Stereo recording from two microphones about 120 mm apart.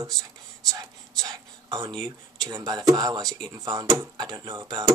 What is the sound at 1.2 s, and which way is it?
Speech, 25° right (ahead or behind).